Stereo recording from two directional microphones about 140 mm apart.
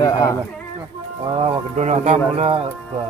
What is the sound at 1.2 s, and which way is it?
Speech, 40° right (ahead or behind).